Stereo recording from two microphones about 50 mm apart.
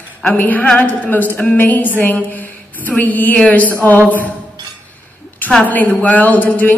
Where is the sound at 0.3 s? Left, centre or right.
Left.